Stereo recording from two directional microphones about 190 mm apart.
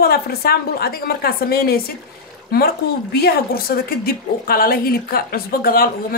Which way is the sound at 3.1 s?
55° left (ahead or behind).